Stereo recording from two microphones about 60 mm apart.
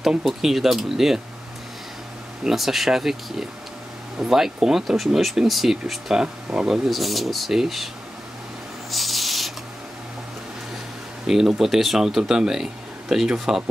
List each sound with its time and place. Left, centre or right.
0.2 s speech: centre
2.4 s speech: centre
6.2 s speech: centre
6.7 s speech: centre
8.9 s rub: centre
11.2 s speech: centre